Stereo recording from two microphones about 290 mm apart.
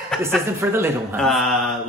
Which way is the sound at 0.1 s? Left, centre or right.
Centre.